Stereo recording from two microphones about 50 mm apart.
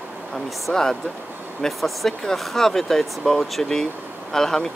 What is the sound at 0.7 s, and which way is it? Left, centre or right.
Speech, centre.